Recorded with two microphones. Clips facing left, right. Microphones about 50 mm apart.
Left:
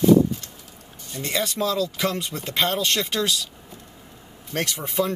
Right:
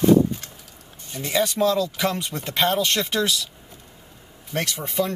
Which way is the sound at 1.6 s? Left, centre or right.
Centre.